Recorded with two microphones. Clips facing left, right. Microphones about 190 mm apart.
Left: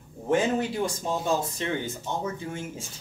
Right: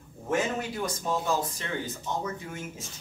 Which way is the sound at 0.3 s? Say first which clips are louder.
Left 5 dB; 30° left (ahead or behind).